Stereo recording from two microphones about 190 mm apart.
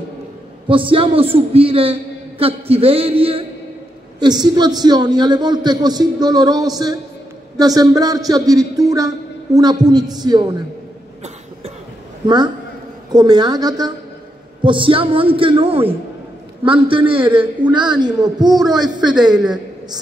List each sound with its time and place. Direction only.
0.7 s a man's voice: 25° right (ahead or behind)
13.1 s a man's voice: 20° right (ahead or behind)
18.7 s a woman's voice: centre (ahead or behind)